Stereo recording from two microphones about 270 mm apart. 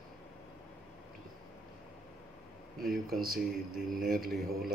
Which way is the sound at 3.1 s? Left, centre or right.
Right.